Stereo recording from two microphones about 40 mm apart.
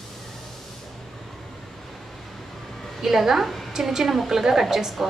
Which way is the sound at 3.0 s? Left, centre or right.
Centre.